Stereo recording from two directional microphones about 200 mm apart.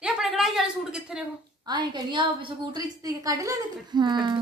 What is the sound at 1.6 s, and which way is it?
A woman's voice, 20° right (ahead or behind).